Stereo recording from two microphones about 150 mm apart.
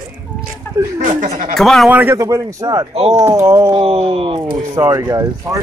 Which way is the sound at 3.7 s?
40° right (ahead or behind).